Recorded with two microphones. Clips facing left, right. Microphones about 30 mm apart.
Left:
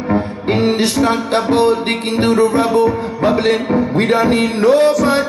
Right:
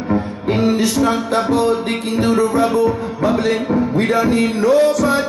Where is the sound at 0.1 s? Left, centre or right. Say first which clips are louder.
Left 2 dB; left.